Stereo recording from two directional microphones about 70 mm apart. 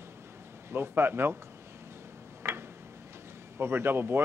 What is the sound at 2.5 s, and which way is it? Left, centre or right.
Tick-tock, right.